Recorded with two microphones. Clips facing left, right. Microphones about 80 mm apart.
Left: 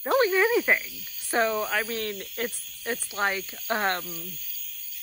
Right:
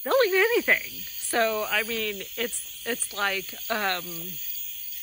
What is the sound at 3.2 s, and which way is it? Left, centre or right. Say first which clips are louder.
Speech: left 2 dB; left.